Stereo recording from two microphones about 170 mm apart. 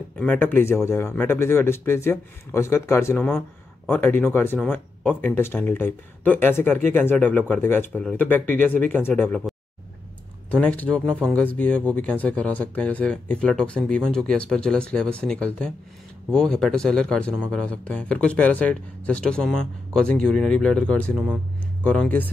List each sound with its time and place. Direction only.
0.2 s speech: 10° left (ahead or behind)
10.5 s speech: 10° left (ahead or behind)